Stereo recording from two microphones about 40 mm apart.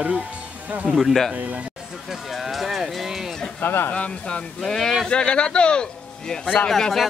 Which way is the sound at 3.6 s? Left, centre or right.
Left.